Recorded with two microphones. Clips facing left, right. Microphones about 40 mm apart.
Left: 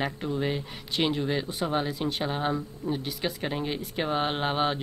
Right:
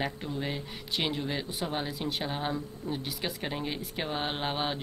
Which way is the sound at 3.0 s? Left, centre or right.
Centre.